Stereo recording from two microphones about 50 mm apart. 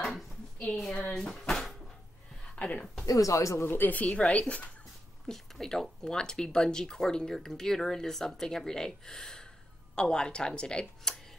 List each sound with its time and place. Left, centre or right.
0.9 s speech: centre
1.5 s cupboard open or close: centre
2.5 s speech: left
3.2 s speech: left
3.6 s a woman's voice: left
4.0 s speech: left
5.2 s speech: centre